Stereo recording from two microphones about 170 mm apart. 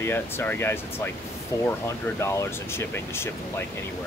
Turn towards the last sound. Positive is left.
turn(degrees=15)  # may be behind; listen again after turning